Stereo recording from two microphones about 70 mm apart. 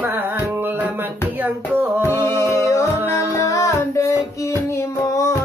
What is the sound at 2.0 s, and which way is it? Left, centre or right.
Music, left.